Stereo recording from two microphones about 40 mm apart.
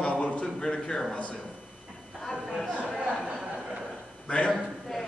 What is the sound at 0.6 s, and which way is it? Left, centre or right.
Speech, centre.